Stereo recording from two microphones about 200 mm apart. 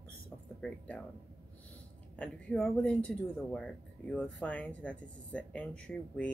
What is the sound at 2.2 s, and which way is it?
Speech, 5° left (ahead or behind).